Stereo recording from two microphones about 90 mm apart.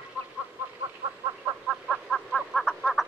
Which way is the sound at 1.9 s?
5° left (ahead or behind).